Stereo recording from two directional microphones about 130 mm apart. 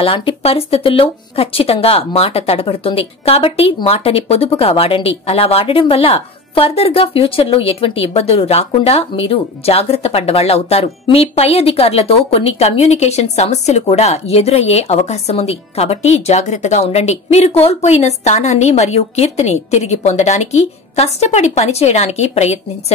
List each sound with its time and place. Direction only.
0.0 s speech: 45° left (ahead or behind)